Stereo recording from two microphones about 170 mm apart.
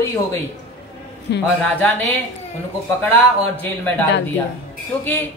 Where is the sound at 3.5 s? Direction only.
10° left (ahead or behind).